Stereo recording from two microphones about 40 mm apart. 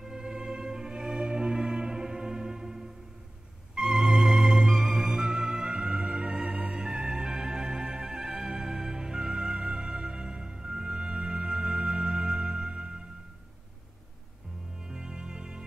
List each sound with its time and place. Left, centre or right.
0.0 s music: centre
14.8 s music: centre